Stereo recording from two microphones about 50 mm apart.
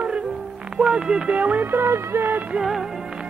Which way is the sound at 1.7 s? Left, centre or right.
Right.